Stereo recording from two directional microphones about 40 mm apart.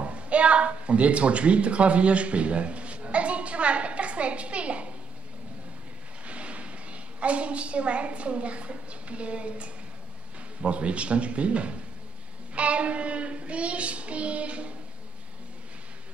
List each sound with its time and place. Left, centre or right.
0.0 s a sound: right
6.2 s a woman's voice: right
10.6 s child singing: right